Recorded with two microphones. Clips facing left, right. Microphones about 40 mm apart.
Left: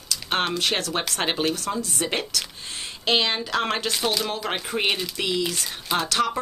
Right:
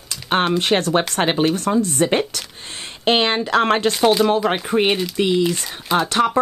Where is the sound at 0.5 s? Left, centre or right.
Right.